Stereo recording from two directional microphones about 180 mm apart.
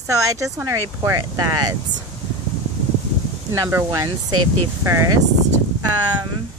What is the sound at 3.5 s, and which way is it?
Speech, 15° right (ahead or behind).